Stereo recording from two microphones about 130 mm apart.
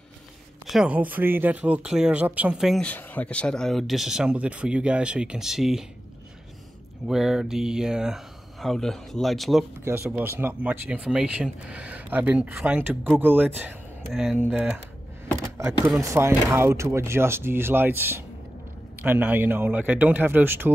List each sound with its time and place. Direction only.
0.7 s speech: 5° right (ahead or behind)
2.8 s speech: 10° left (ahead or behind)
7.1 s speech: 5° right (ahead or behind)
9.8 s speech: 20° right (ahead or behind)
15.3 s speech: 25° right (ahead or behind)